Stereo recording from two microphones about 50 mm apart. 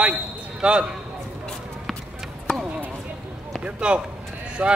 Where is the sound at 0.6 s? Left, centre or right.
Centre.